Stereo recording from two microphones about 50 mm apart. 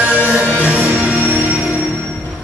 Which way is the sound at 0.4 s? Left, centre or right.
Right.